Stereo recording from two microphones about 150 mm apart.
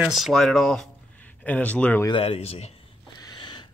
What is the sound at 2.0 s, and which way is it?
Speech, 40° left (ahead or behind).